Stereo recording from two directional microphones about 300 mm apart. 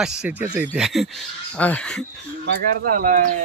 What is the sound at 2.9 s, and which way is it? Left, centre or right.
Speech, right.